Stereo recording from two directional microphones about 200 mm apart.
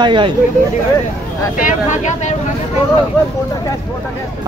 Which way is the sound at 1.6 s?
40° left (ahead or behind).